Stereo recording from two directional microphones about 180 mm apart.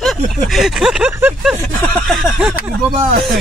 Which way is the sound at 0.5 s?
Centre (ahead or behind).